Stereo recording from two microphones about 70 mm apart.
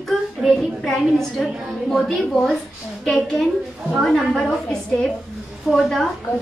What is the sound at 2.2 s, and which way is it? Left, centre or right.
Speech, centre.